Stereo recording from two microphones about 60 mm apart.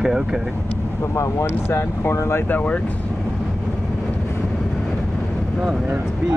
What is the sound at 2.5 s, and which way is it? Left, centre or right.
Speech, left.